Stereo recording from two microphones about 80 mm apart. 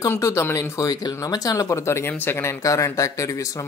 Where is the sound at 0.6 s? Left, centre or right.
Left.